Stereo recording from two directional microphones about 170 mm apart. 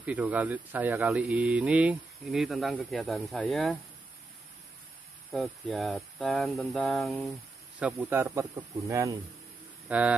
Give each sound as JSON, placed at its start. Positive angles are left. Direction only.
{"t": 0.0, "sound": "speech", "side_deg": -10}
{"t": 5.3, "sound": "speech", "side_deg": 0}
{"t": 9.8, "sound": "speech", "side_deg": -10}